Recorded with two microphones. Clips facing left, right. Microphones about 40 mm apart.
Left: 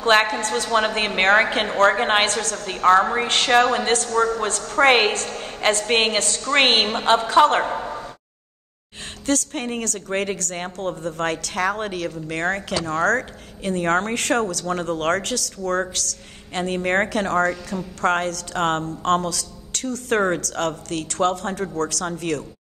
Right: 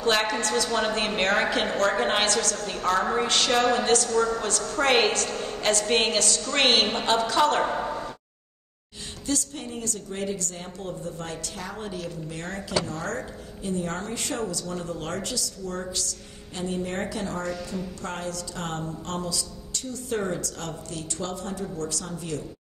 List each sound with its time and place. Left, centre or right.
0.0 s a woman's voice: left
7.6 s a sound: centre
9.2 s a woman's voice: left